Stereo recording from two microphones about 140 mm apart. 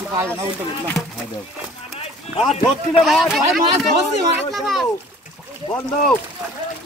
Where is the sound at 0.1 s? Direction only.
20° right (ahead or behind).